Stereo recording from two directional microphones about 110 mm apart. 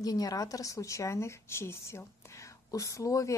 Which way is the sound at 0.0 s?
35° left (ahead or behind).